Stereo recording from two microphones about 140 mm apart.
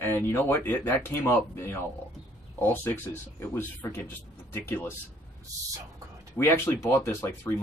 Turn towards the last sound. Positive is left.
turn(degrees=20)  # may be behind; listen again after turning